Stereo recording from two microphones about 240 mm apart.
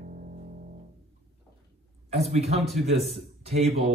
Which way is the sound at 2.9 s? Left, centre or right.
Centre.